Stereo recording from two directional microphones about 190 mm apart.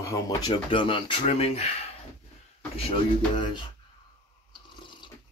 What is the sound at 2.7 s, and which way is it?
Speech, 25° left (ahead or behind).